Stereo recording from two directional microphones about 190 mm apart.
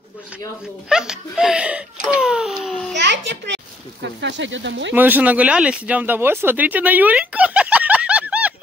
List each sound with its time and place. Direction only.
0.8 s a child's voice: 5° right (ahead or behind)
2.9 s a child's voice: 65° right (ahead or behind)
4.9 s speech: 10° right (ahead or behind)